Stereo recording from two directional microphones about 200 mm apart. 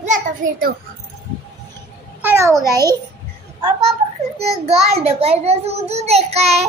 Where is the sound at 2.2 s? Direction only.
15° right (ahead or behind).